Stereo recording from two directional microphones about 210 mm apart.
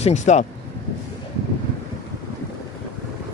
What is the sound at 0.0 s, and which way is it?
Speech, 35° left (ahead or behind).